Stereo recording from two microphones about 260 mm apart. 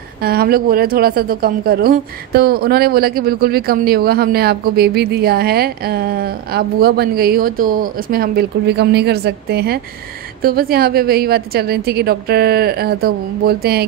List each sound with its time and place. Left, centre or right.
0.2 s speech: right